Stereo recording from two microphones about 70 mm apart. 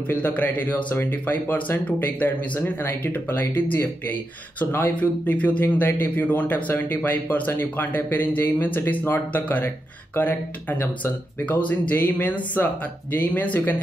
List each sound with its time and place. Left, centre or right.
0.1 s speech: left